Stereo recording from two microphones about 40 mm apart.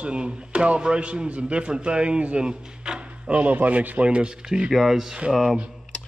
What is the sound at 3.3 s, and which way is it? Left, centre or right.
Speech, right.